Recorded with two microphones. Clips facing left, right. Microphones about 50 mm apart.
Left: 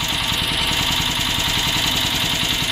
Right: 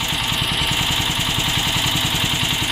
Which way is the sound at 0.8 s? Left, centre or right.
Centre.